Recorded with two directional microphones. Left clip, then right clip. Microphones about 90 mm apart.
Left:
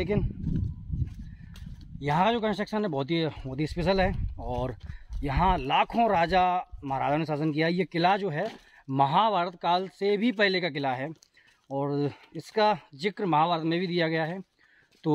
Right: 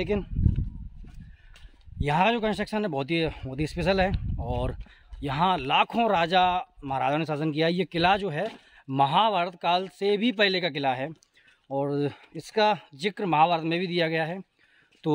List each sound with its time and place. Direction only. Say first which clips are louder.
0.0 s speech: right 1 dB; 30° right (ahead or behind)
2.0 s a man's voice: right 1 dB; 15° right (ahead or behind)